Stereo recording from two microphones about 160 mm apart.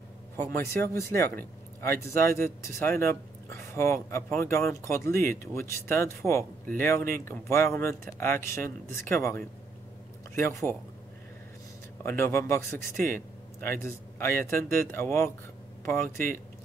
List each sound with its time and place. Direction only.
0.4 s speech: 15° left (ahead or behind)
12.0 s speech: 15° left (ahead or behind)